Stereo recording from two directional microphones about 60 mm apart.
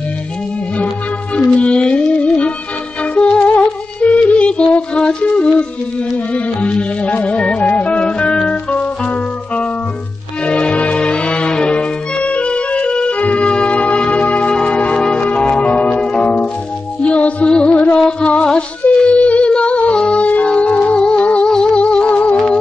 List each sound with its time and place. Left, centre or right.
1.3 s music: centre
10.4 s music: centre